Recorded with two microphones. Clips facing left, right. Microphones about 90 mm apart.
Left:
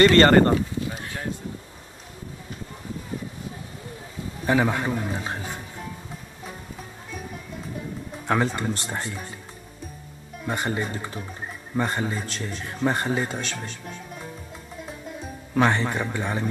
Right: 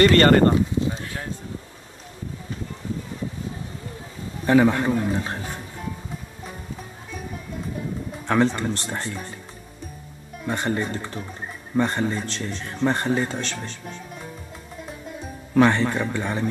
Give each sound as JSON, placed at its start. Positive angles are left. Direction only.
{"t": 0.0, "sound": "speech", "side_deg": 35}
{"t": 4.5, "sound": "speech", "side_deg": 10}
{"t": 8.3, "sound": "speech", "side_deg": 5}
{"t": 10.4, "sound": "speech", "side_deg": 5}
{"t": 14.9, "sound": "music", "side_deg": 0}
{"t": 15.6, "sound": "speech", "side_deg": 10}